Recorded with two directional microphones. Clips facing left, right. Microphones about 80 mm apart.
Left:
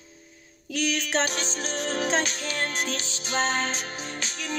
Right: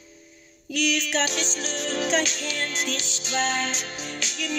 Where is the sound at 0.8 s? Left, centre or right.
Left.